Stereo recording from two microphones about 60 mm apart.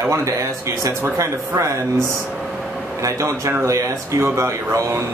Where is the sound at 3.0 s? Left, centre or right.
Right.